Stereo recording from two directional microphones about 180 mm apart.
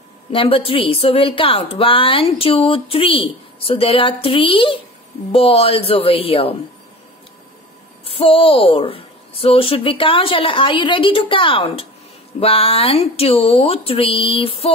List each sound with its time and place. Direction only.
0.3 s a woman's voice: 30° left (ahead or behind)
8.0 s a woman's voice: 30° left (ahead or behind)